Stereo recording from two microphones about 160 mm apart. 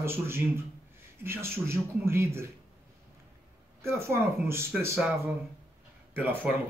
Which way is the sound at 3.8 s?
15° right (ahead or behind).